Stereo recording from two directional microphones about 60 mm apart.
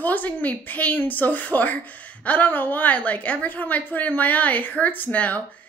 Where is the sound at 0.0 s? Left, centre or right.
Left.